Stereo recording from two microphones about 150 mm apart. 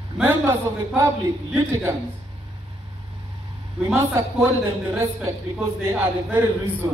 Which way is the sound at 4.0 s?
20° right (ahead or behind).